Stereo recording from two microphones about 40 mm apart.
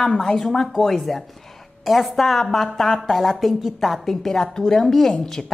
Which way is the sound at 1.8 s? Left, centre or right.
Centre.